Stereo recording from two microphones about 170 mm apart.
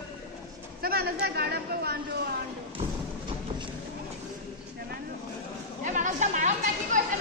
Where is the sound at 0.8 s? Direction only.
65° right (ahead or behind).